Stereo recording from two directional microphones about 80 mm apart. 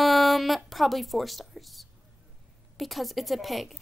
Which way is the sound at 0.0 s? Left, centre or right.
Centre.